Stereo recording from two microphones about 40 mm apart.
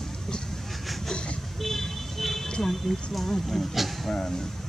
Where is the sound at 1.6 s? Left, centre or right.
Centre.